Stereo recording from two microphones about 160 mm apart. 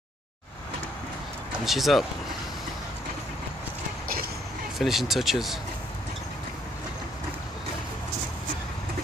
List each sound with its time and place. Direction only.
1.6 s speech: centre (ahead or behind)
4.7 s speech: centre (ahead or behind)